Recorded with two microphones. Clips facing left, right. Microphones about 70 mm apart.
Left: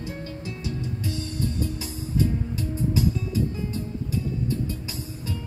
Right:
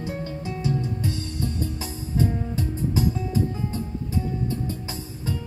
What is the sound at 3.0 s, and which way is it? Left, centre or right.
Music, right.